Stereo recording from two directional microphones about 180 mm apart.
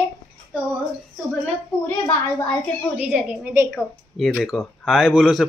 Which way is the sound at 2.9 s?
10° right (ahead or behind).